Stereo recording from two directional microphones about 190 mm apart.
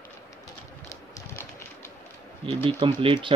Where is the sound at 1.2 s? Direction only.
10° left (ahead or behind).